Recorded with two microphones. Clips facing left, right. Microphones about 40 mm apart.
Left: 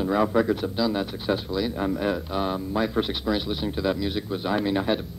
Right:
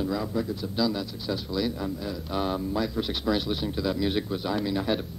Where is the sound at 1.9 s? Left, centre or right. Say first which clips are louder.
Left 7 dB; left.